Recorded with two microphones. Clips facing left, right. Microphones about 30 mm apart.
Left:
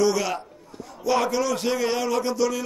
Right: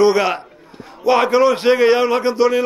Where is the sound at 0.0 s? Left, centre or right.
Right.